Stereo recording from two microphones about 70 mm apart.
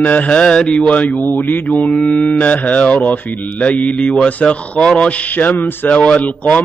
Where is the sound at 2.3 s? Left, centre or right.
Left.